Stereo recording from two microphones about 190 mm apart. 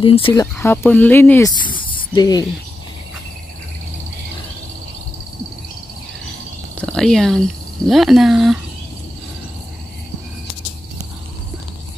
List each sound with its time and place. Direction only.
0.0 s speech: 25° left (ahead or behind); by 1.5 s 10° left (ahead or behind)
1.5 s a sound: 25° left (ahead or behind)
6.8 s speech: 5° left (ahead or behind)